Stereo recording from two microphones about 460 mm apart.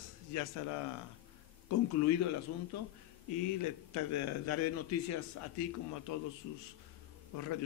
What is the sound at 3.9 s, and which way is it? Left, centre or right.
A man's voice, left.